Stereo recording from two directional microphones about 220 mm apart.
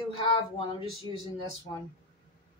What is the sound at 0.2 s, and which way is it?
Speech, 25° left (ahead or behind).